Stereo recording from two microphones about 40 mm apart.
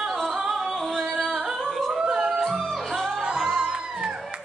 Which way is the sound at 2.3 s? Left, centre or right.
Centre.